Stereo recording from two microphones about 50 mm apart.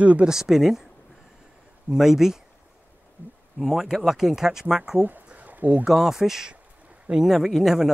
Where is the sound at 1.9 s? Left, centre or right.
Centre.